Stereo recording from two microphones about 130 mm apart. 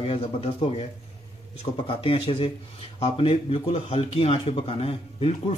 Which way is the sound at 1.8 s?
45° left (ahead or behind).